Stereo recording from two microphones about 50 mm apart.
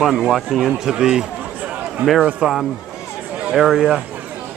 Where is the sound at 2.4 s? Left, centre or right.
Centre.